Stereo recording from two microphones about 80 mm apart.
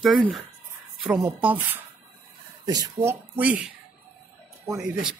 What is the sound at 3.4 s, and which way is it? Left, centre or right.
Speech, centre.